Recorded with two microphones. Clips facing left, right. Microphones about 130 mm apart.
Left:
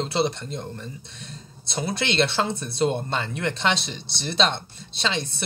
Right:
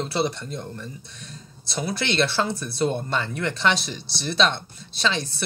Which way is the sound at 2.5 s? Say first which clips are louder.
Left 1 dB; 25° left (ahead or behind).